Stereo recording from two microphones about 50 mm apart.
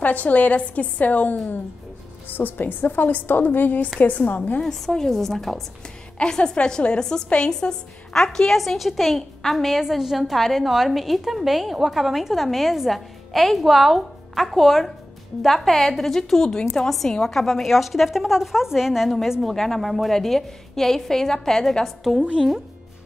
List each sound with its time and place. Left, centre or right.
0.0 s a woman's voice: left
4.6 s a woman's voice: centre
6.1 s a woman's voice: centre
8.5 s a woman's voice: centre
19.4 s a woman's voice: centre